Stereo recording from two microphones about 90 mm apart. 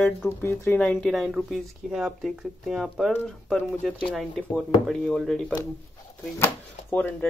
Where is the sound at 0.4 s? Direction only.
20° left (ahead or behind).